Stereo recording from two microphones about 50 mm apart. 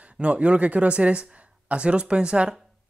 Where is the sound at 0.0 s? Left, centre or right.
Right.